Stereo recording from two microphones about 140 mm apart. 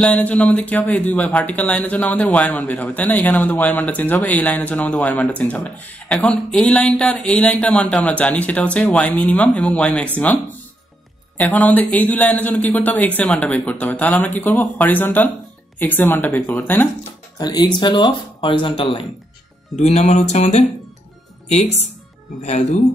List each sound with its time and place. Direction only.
0.0 s speech: 10° left (ahead or behind)
17.4 s speech: 30° left (ahead or behind)
19.8 s music: 50° left (ahead or behind)
22.4 s speech: 55° left (ahead or behind)